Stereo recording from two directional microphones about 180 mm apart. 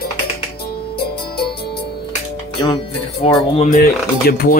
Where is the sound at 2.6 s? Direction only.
30° left (ahead or behind).